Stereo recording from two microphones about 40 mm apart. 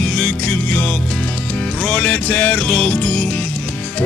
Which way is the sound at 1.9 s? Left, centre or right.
Left.